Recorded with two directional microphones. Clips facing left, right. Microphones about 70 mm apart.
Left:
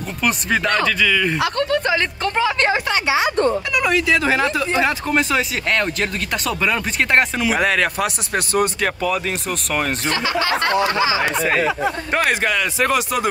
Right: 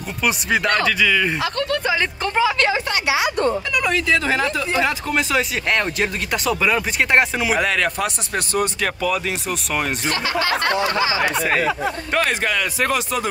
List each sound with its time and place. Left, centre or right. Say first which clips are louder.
0.2 s speech: even; centre
2.6 s a woman's voice: left 1 dB; left
3.7 s speech: left 2 dB; centre
5.1 s speech: left 1 dB; centre
5.7 s speech: left 1 dB; centre
8.5 s speech: left 2 dB; centre
10.0 s speech: left 1 dB; left
11.3 s speech: left 1 dB; centre
11.6 s speech: left 1 dB; left